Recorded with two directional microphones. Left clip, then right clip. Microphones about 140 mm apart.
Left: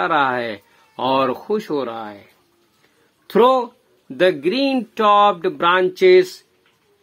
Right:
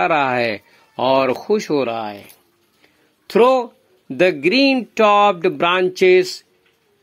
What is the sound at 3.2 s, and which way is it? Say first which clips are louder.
Speech: right 1 dB; 40° right (ahead or behind).